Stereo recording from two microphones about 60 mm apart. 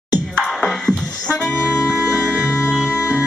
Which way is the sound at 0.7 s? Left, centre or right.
Centre.